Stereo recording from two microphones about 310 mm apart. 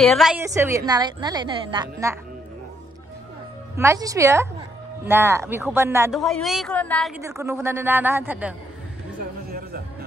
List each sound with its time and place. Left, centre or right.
0.0 s a woman's voice: centre
3.7 s a woman's voice: centre
7.2 s a woman's voice: centre
9.5 s music: right